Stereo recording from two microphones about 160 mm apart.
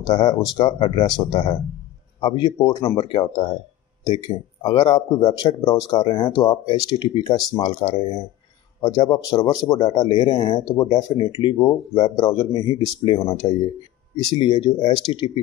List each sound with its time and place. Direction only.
0.0 s speech: 25° left (ahead or behind)